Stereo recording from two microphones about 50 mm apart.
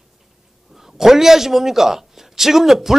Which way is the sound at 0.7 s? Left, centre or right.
Centre.